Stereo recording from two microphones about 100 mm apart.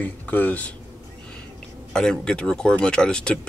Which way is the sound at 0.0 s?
15° left (ahead or behind).